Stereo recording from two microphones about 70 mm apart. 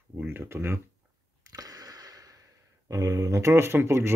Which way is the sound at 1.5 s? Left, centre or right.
Right.